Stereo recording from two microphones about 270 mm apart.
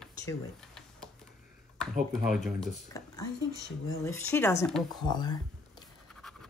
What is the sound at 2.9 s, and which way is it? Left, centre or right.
Speech, centre.